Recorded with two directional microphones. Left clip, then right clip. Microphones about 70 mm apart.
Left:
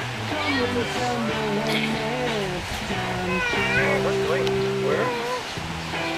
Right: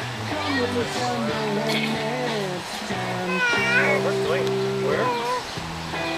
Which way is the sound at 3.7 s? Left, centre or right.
Right.